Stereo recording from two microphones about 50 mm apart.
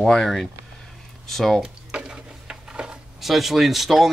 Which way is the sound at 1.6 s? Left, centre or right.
Centre.